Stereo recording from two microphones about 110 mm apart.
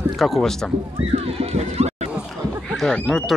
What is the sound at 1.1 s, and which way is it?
Speech, 80° right.